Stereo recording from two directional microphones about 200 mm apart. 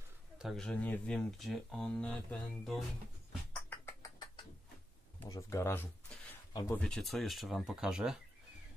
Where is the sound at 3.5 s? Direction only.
10° left (ahead or behind).